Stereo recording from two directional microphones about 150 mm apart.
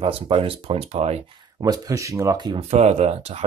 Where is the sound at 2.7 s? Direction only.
45° right (ahead or behind).